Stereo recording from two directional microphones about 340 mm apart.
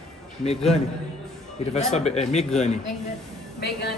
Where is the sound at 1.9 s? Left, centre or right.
Centre.